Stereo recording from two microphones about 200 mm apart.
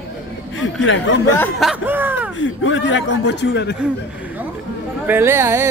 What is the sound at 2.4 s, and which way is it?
Speech, 75° left (ahead or behind).